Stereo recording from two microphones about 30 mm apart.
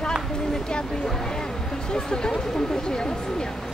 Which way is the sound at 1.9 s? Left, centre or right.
Left.